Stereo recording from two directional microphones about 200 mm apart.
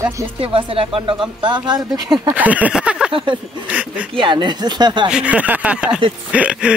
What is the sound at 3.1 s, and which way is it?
Speech, 25° right (ahead or behind).